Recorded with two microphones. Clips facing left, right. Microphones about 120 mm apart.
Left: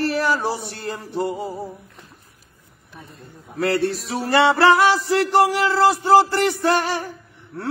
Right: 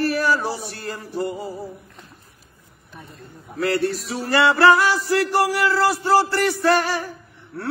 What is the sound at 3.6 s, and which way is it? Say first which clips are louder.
Speech: left 1 dB; 30° left (ahead or behind).